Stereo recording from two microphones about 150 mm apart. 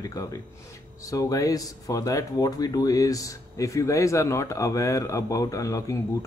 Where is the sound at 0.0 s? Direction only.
25° left (ahead or behind).